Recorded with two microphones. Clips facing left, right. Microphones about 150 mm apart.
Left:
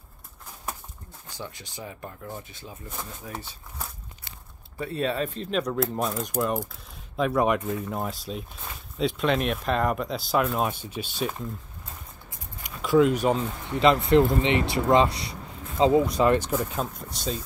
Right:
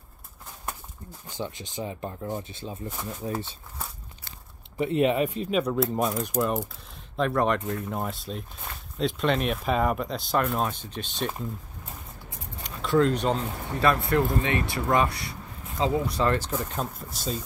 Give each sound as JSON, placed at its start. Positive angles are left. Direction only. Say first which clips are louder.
{"t": 1.3, "sound": "speech", "louder": "right 5 dB", "side_deg": -20}
{"t": 4.7, "sound": "speech", "louder": "right 5 dB", "side_deg": -20}
{"t": 12.6, "sound": "keys jangling", "louder": "left 2 dB", "side_deg": 10}
{"t": 13.7, "sound": "speech", "louder": "left 4 dB", "side_deg": 20}